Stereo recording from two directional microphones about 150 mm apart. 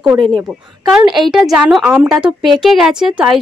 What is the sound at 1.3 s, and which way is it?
Speech, 5° right (ahead or behind).